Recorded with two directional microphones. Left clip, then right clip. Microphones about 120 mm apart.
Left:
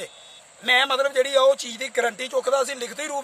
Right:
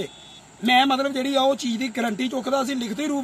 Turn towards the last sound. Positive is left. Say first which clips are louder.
# right 2 dB
turn(degrees=30)  # may be behind; listen again after turning